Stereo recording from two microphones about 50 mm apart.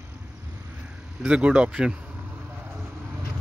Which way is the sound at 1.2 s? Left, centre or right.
Right.